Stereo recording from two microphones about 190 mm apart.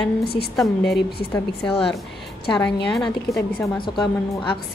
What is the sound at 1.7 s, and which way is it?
Speech, 30° left (ahead or behind).